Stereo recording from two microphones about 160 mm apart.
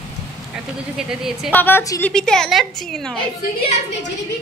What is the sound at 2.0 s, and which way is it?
A woman's voice, 5° left (ahead or behind).